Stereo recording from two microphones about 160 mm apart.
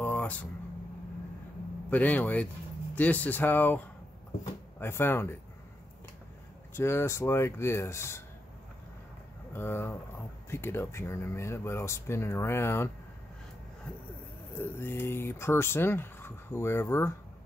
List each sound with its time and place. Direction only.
0.0 s a sound: 10° left (ahead or behind)
1.9 s speech: 10° left (ahead or behind)
6.7 s speech: 15° left (ahead or behind)
9.5 s speech: 15° left (ahead or behind)
14.6 s speech: 15° left (ahead or behind)